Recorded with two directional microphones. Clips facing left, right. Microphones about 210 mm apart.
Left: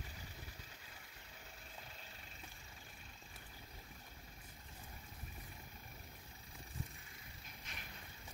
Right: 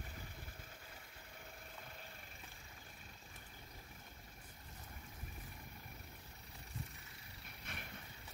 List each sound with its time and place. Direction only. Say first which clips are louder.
7.7 s vehicle: right 5 dB; 60° right (ahead or behind)